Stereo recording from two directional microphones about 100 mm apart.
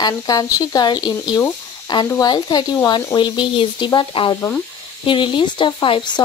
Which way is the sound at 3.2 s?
50° left (ahead or behind).